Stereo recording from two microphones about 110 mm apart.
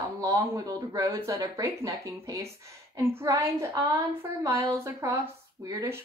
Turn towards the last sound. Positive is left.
turn(degrees=-30)  # may be behind; listen again after turning